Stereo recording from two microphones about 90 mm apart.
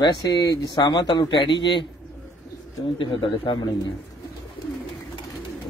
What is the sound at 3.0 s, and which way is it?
Speech, 60° left (ahead or behind).